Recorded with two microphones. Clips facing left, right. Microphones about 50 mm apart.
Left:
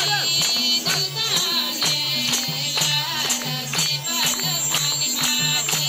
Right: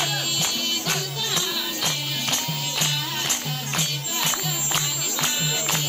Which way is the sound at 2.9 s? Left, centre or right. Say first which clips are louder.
Left 3 dB; left.